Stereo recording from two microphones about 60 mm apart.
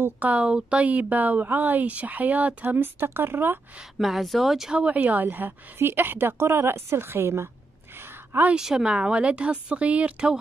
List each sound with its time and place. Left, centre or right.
0.2 s a woman's voice: right
4.0 s speech: centre
4.9 s a woman's voice: right
8.5 s speech: centre